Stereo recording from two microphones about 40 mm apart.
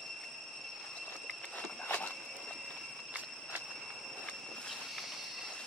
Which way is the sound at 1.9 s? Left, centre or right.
Left.